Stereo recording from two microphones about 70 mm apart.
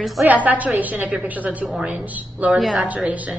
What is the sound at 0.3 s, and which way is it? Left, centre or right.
A woman's voice, right.